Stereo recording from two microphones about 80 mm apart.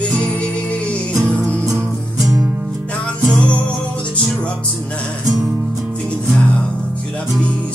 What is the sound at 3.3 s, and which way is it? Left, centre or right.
Music, centre.